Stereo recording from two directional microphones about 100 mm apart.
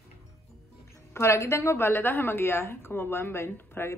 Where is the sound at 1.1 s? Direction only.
25° left (ahead or behind).